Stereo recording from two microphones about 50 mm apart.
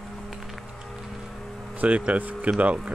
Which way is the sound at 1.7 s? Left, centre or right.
Right.